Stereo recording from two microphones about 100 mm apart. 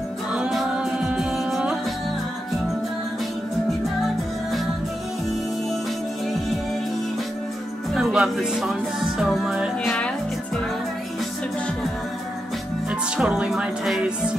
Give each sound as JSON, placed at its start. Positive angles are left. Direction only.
{"t": 0.3, "sound": "music", "side_deg": -5}
{"t": 7.9, "sound": "music", "side_deg": -5}
{"t": 13.2, "sound": "speech", "side_deg": -10}